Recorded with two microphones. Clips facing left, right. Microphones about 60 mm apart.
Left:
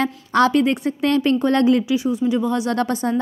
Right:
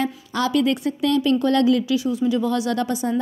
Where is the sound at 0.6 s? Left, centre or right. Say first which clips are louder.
Left 1 dB; left.